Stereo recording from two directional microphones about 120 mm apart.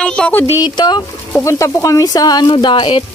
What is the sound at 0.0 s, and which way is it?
Speech, 10° left (ahead or behind).